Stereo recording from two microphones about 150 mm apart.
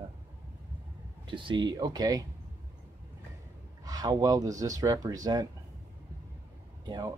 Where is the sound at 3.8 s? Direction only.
25° right (ahead or behind).